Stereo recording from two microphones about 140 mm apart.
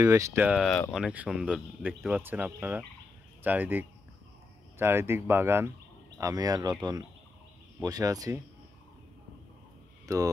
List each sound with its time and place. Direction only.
0.0 s speech: 20° right (ahead or behind)
0.9 s speech: 10° right (ahead or behind); by 8.4 s 25° right (ahead or behind)
10.0 s speech: 25° right (ahead or behind)